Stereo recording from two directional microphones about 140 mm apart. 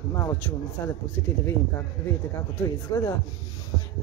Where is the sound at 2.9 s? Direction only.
20° left (ahead or behind).